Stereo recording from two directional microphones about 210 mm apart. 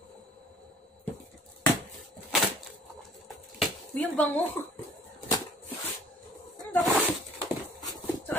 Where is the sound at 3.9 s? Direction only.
5° left (ahead or behind).